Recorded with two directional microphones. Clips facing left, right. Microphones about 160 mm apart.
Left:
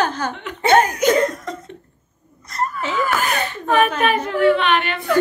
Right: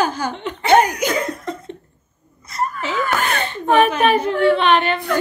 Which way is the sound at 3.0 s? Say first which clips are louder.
Even; 5° left (ahead or behind).